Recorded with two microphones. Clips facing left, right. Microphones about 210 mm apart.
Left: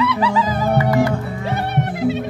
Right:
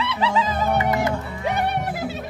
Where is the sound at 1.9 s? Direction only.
Centre (ahead or behind).